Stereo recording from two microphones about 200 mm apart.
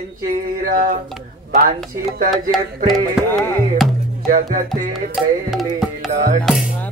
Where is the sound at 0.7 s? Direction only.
45° right (ahead or behind).